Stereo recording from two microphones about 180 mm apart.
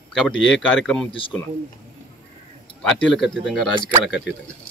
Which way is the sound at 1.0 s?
30° left (ahead or behind).